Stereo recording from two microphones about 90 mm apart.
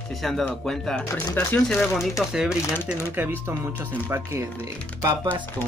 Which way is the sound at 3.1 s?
20° right (ahead or behind).